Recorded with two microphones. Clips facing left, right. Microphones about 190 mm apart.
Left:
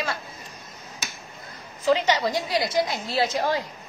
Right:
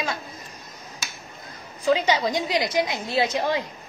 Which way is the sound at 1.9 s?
15° right (ahead or behind).